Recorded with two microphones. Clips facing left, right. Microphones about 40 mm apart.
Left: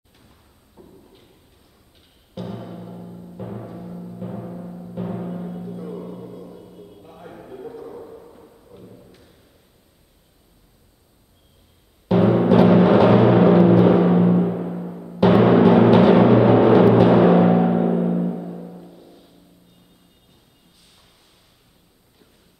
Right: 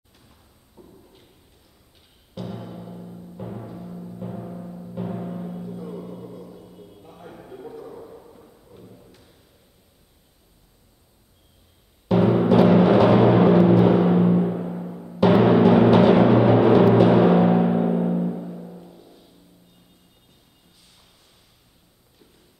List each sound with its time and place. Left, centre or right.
0.3 s a sound: centre
2.3 s timpani: centre
12.1 s timpani: centre